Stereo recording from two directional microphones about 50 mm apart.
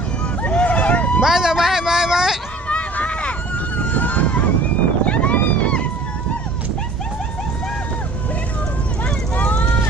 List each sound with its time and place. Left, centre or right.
0.4 s vehicle: left
1.2 s a man's voice: centre
2.7 s vehicle: left
5.0 s a sound: left
9.4 s vehicle: left